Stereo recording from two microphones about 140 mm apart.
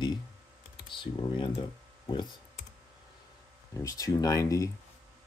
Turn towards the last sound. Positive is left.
turn(degrees=25)  # may be behind; listen again after turning